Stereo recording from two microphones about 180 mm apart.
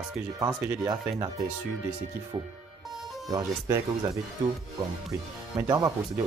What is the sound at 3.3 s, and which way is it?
Speech, 20° right (ahead or behind).